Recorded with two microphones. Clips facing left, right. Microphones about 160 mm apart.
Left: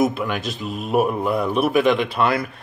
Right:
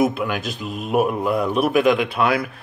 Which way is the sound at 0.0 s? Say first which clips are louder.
Even; centre (ahead or behind).